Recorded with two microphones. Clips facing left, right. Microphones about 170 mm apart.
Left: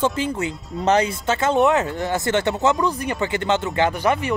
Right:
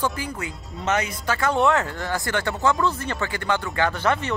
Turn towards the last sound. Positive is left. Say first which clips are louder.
# left 3 dB
turn(degrees=15)  # may be behind; listen again after turning